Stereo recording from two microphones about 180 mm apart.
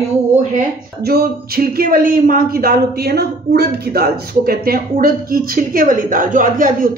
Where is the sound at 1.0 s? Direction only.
60° right (ahead or behind).